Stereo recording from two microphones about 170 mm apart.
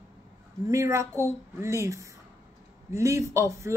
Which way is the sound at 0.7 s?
20° right (ahead or behind).